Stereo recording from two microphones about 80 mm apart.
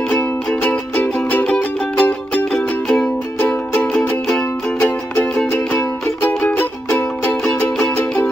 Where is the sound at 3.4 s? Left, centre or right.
Left.